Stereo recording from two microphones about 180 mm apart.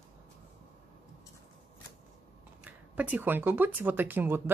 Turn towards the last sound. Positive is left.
turn(degrees=-10)  # may be behind; listen again after turning